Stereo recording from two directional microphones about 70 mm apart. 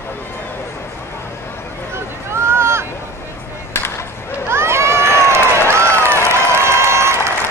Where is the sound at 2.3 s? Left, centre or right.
Right.